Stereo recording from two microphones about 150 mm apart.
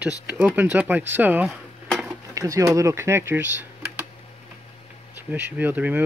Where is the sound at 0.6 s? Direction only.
10° right (ahead or behind).